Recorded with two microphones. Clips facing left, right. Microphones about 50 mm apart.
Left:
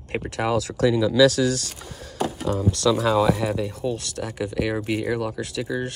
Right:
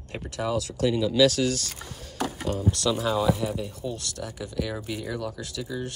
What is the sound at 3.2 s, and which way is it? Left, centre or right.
Speech, left.